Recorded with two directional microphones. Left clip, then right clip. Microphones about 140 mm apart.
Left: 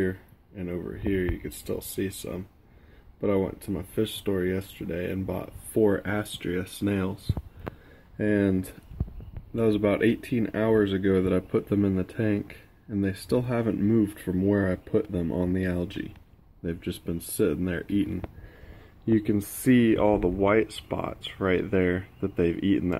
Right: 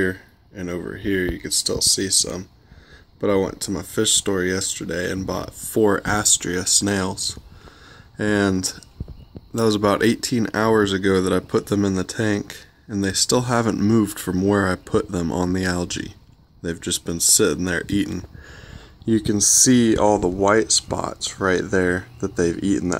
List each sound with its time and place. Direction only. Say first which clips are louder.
0.0 s speech: right 6 dB; 25° right (ahead or behind)
16.6 s speech: right 7 dB; 25° right (ahead or behind)
19.3 s speech: right 8 dB; 30° right (ahead or behind)